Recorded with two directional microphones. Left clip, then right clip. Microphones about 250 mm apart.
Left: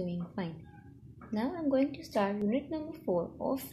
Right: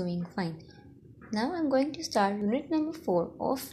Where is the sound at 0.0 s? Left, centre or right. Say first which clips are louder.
Right 4 dB; right.